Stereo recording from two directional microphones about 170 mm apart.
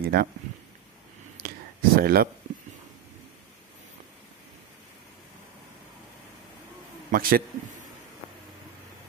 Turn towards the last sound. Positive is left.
turn(degrees=-60)  # may be behind; listen again after turning